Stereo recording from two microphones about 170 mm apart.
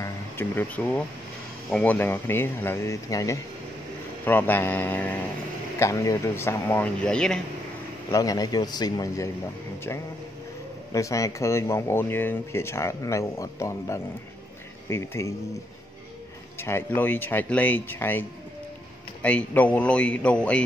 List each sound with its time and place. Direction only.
0.0 s speech: 10° left (ahead or behind)
8.1 s a man's voice: 20° left (ahead or behind)
10.9 s speech: 20° left (ahead or behind)
16.5 s speech: 15° left (ahead or behind)
19.2 s speech: 10° left (ahead or behind)